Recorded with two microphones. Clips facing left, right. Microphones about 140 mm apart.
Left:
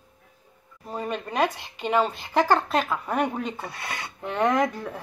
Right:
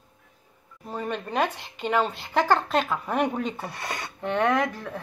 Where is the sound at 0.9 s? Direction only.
5° left (ahead or behind).